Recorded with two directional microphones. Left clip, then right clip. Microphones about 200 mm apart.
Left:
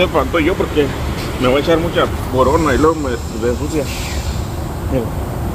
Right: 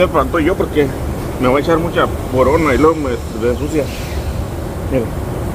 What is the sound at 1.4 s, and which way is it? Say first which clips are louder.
Speech: even; 15° right (ahead or behind).